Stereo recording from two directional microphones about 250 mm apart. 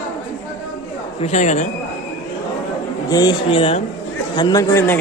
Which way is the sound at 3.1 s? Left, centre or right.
Centre.